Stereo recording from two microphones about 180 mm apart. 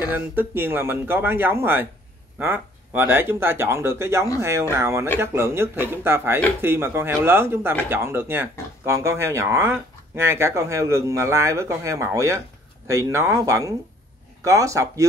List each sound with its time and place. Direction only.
0.0 s speech: 10° right (ahead or behind)